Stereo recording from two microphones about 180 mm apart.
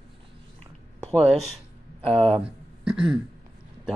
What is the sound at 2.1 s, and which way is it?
Speech, centre (ahead or behind).